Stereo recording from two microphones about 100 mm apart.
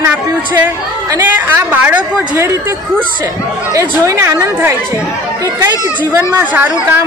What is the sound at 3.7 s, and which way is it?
Speech, 30° right (ahead or behind).